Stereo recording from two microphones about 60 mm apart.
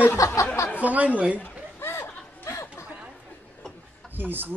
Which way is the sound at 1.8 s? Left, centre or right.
Left.